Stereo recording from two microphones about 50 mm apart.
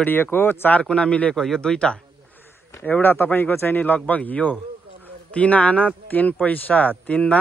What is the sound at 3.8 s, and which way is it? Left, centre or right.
A man's voice, left.